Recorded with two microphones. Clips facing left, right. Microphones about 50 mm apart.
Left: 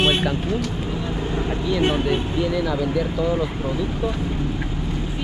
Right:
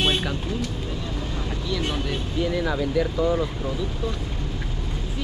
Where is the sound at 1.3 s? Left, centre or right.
Left.